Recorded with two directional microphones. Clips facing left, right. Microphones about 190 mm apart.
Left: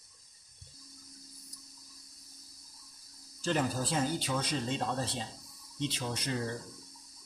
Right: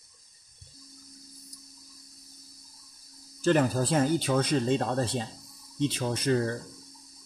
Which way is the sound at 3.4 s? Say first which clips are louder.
Right 8 dB; 55° right (ahead or behind).